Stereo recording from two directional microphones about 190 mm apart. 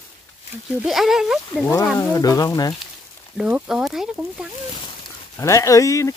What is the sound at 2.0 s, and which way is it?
Speech, 20° left (ahead or behind).